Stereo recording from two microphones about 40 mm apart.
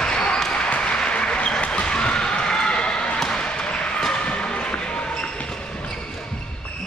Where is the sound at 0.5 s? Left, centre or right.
Left.